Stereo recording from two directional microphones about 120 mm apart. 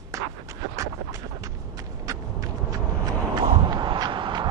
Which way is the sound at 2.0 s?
30° right (ahead or behind).